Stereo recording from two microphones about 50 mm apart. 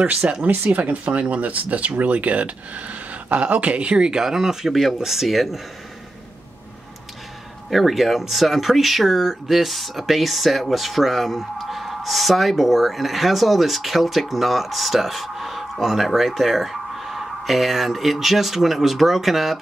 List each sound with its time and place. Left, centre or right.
0.0 s speech: right; by 5.6 s centre
7.7 s speech: centre